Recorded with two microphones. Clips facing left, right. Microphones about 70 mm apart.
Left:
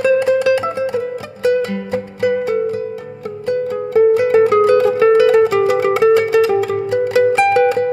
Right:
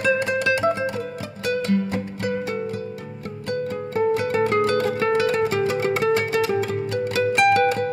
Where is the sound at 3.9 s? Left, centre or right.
Left.